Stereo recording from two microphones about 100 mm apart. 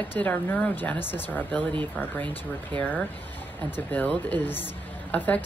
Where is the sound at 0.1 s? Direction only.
15° left (ahead or behind).